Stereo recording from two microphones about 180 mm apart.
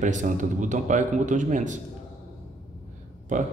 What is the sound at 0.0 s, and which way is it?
Speech, 45° right (ahead or behind).